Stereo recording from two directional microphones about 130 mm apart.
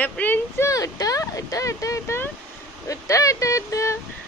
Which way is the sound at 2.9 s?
25° left (ahead or behind).